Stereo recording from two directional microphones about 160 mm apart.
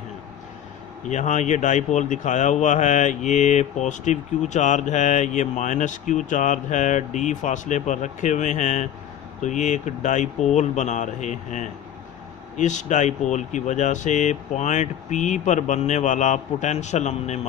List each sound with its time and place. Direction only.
1.0 s speech: 50° left (ahead or behind)